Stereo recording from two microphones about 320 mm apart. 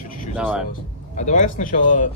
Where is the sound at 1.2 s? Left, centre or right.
Left.